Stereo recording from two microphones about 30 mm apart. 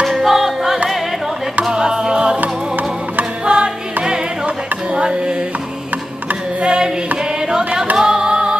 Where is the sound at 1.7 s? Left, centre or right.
Right.